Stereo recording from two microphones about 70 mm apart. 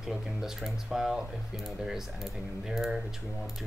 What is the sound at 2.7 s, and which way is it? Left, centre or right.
Speech, centre.